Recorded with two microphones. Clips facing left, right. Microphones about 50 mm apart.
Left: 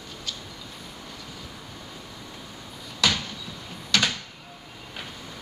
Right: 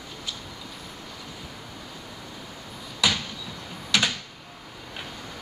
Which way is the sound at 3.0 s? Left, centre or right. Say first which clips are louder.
Even; centre.